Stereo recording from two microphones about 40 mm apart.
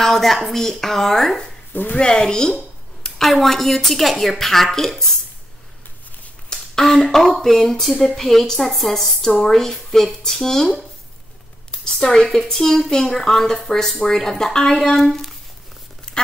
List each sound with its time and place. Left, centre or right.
0.0 s a woman's voice: centre
1.7 s speech: left
2.0 s speech: left
3.2 s a woman's voice: centre
6.8 s a woman's voice: centre
12.0 s a woman's voice: centre